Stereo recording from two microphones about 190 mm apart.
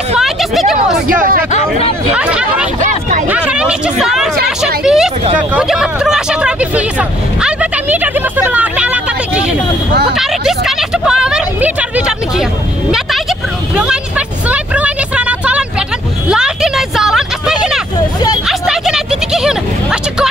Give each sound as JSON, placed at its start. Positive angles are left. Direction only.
{"t": 0.2, "sound": "hubbub", "side_deg": 0}
{"t": 1.0, "sound": "speech", "side_deg": -50}
{"t": 1.5, "sound": "speech", "side_deg": 35}
{"t": 2.1, "sound": "speech", "side_deg": -5}
{"t": 2.8, "sound": "speech", "side_deg": -40}
{"t": 3.3, "sound": "speech", "side_deg": -10}
{"t": 5.5, "sound": "vehicle", "side_deg": -5}
{"t": 10.1, "sound": "a sound", "side_deg": 0}
{"t": 13.7, "sound": "vehicle", "side_deg": -5}